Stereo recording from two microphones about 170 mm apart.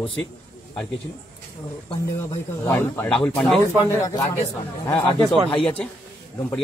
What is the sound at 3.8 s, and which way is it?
Speech, 20° left (ahead or behind).